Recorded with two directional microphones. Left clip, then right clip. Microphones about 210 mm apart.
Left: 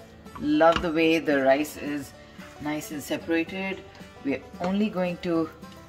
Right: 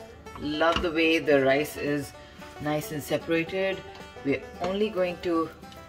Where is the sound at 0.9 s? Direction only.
55° left (ahead or behind).